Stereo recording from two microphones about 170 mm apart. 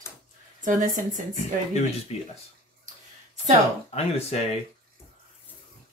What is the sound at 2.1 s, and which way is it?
Speech, 40° left (ahead or behind).